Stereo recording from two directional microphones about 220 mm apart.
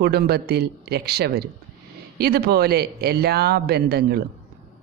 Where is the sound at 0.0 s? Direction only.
45° right (ahead or behind).